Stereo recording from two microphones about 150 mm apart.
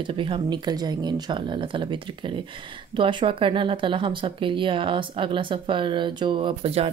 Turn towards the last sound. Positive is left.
turn(degrees=-40)  # may be behind; listen again after turning